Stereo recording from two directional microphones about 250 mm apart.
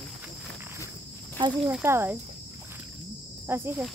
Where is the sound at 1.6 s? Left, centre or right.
Centre.